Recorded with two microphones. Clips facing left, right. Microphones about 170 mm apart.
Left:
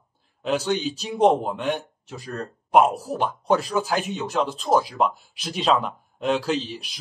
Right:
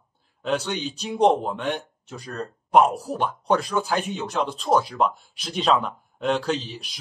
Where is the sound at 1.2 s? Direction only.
5° left (ahead or behind).